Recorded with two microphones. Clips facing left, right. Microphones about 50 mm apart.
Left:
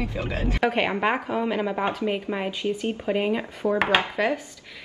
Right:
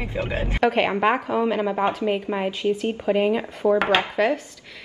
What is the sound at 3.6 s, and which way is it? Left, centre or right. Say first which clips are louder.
Speech: right 5 dB; centre.